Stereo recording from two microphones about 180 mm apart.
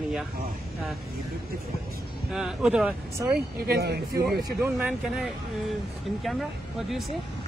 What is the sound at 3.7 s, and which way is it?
Speech, 60° right (ahead or behind).